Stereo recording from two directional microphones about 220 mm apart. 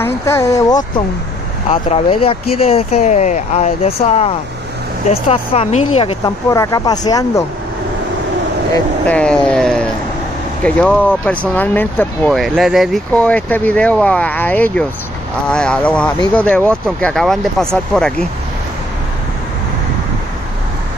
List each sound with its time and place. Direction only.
0.0 s speech: 10° left (ahead or behind)
1.7 s speech: 25° left (ahead or behind)
6.5 s speech: 15° left (ahead or behind)
8.7 s speech: 5° left (ahead or behind)